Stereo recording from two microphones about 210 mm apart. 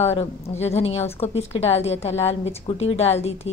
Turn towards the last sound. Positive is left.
turn(degrees=30)  # may be behind; listen again after turning